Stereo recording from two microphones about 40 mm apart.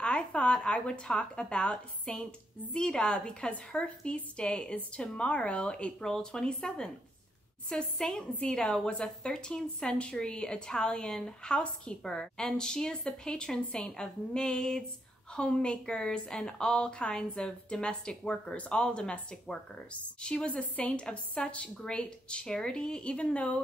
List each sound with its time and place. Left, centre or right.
0.0 s a woman's voice: left
6.0 s a woman's voice: centre
12.0 s a woman's voice: centre; by 23.6 s left